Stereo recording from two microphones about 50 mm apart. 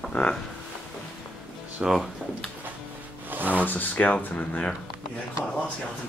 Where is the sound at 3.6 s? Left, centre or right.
Left.